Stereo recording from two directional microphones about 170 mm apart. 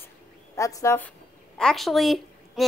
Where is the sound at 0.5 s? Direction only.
20° left (ahead or behind).